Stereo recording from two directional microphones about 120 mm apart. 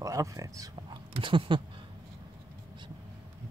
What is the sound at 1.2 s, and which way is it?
Speech, 45° right (ahead or behind).